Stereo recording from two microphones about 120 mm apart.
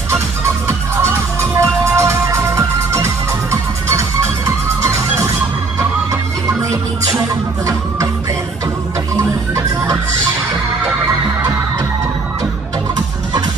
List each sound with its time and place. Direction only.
1.4 s music: 25° right (ahead or behind)
4.8 s music: 25° right (ahead or behind)
9.1 s music: 25° right (ahead or behind)